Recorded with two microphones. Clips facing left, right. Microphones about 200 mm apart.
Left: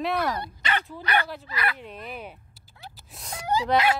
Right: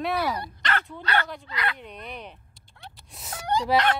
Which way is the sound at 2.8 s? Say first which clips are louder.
Left 1 dB; centre (ahead or behind).